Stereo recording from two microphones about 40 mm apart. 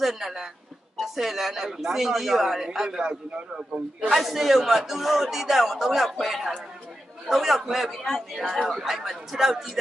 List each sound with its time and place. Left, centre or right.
0.0 s a man's voice: centre
3.7 s speech: right
4.1 s a man's voice: centre